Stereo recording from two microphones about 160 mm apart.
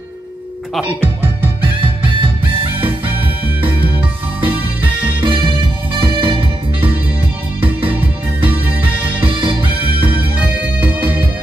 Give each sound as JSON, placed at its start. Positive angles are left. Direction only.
{"t": 1.0, "sound": "music", "side_deg": -10}
{"t": 1.8, "sound": "music", "side_deg": -30}
{"t": 4.4, "sound": "music", "side_deg": -30}
{"t": 7.6, "sound": "music", "side_deg": -10}
{"t": 9.2, "sound": "music", "side_deg": -35}
{"t": 9.8, "sound": "music", "side_deg": -10}